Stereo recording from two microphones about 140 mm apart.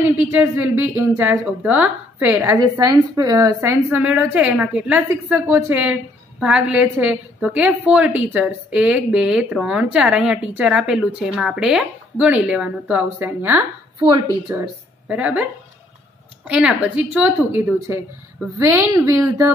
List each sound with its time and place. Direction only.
0.0 s a woman's voice: 15° right (ahead or behind)
13.9 s a woman's voice: 30° right (ahead or behind)
14.5 s a woman's voice: 20° right (ahead or behind)
16.4 s a woman's voice: 5° right (ahead or behind)